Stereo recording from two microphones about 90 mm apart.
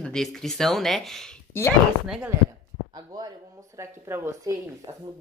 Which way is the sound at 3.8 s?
30° right (ahead or behind).